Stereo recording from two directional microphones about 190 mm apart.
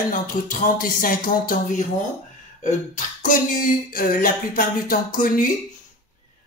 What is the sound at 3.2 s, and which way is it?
A man's voice, 45° left (ahead or behind).